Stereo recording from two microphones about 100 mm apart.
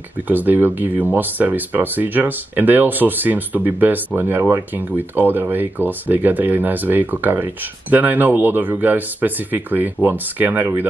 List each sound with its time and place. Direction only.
0.3 s speech: 20° right (ahead or behind)